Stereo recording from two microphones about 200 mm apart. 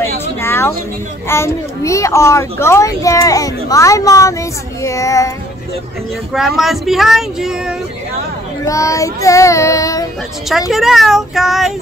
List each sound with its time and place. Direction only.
0.0 s a sound: 10° left (ahead or behind)
1.3 s a child's voice: 15° left (ahead or behind)
6.3 s speech: centre (ahead or behind)
8.6 s a child's voice: 15° left (ahead or behind)
10.7 s speech: centre (ahead or behind)